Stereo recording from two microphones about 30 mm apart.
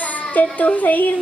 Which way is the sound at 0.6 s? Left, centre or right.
Left.